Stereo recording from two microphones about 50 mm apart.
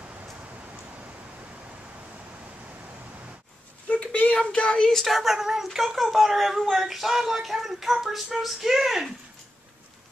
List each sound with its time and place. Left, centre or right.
3.9 s a sound: left
4.4 s speech: centre
4.8 s a woman's voice: centre